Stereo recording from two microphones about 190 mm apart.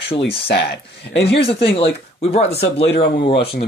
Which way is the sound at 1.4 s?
30° left (ahead or behind).